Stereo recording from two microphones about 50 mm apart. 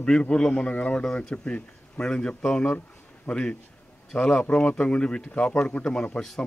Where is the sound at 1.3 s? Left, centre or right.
Left.